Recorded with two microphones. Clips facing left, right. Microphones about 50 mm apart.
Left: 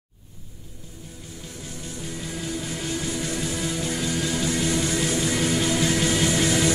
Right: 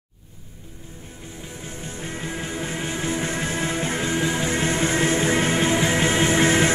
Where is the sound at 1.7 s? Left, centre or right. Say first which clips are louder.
Right 2 dB; right.